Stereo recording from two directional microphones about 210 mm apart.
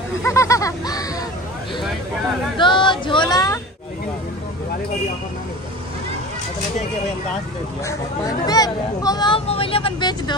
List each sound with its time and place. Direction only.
0.2 s a sound: 15° left (ahead or behind)
2.5 s speech: 25° left (ahead or behind)
8.5 s speech: 20° left (ahead or behind)